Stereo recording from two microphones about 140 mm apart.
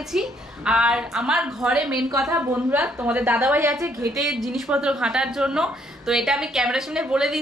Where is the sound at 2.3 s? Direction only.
15° right (ahead or behind).